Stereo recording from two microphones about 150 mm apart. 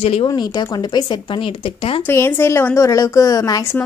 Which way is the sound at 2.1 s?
15° left (ahead or behind).